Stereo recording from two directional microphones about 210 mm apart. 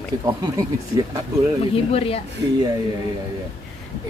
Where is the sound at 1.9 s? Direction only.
30° left (ahead or behind).